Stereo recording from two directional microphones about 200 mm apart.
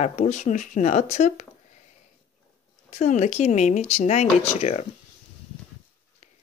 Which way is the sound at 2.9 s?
35° left (ahead or behind).